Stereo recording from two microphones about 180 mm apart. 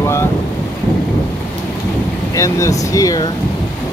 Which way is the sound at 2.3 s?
15° left (ahead or behind).